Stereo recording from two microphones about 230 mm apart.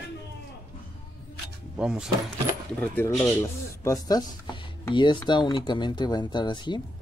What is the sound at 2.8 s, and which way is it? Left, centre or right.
Speech, centre.